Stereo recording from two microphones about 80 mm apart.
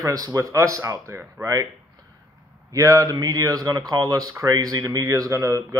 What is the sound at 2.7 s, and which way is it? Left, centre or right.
Speech, right.